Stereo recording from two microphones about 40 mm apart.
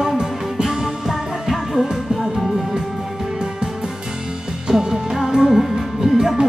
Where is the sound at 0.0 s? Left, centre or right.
Centre.